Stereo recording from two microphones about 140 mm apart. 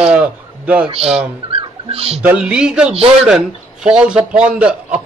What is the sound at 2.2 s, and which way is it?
A man's voice, 10° right (ahead or behind).